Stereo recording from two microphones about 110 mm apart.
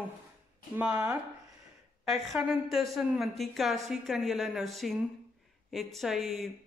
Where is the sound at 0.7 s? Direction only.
15° right (ahead or behind).